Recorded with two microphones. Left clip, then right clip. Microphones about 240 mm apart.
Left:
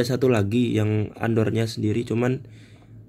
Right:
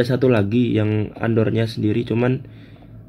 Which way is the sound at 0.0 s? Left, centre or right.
Centre.